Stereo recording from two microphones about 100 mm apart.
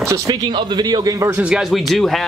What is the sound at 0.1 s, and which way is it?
Speech, 45° right (ahead or behind).